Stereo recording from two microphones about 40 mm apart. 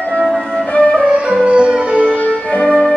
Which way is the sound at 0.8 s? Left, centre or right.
Left.